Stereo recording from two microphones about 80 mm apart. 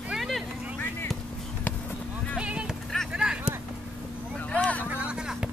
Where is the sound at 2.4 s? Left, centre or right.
Centre.